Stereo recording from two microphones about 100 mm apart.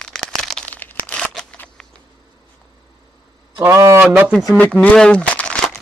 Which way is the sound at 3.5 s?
30° right (ahead or behind).